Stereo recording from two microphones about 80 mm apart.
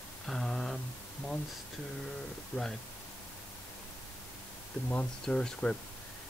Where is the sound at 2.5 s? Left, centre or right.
Left.